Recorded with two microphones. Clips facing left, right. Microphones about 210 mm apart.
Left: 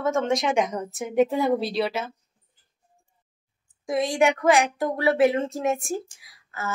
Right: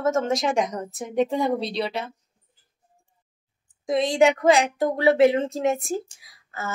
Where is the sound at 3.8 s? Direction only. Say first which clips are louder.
Right 3 dB; 20° right (ahead or behind).